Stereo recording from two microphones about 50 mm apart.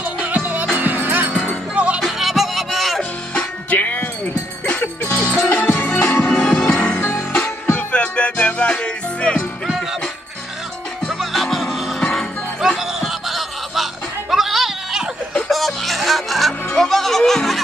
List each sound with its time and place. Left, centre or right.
0.0 s music: right
2.1 s music: centre
3.7 s wind chime: left
5.0 s music: left
5.3 s music: left
11.1 s music: centre